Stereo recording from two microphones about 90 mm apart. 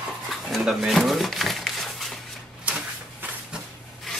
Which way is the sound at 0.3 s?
Centre (ahead or behind).